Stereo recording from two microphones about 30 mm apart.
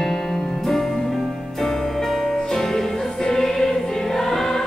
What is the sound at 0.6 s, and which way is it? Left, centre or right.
Music, centre.